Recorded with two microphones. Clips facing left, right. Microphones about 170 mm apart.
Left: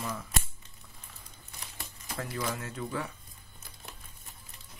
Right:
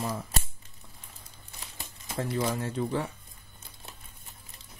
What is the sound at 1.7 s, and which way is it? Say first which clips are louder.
Speech: right 5 dB; 25° right (ahead or behind).